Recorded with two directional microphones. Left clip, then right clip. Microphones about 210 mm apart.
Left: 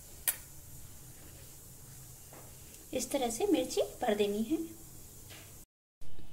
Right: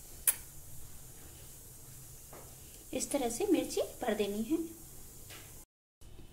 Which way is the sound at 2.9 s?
5° left (ahead or behind).